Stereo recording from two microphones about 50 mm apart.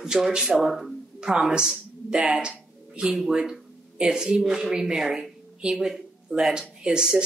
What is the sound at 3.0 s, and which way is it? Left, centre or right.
Speech, centre.